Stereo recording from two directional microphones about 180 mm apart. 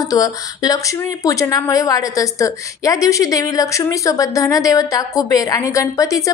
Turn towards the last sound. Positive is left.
turn(degrees=20)  # may be behind; listen again after turning